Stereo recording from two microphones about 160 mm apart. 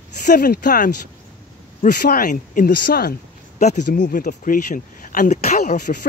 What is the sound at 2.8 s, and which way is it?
Speech, 75° left (ahead or behind).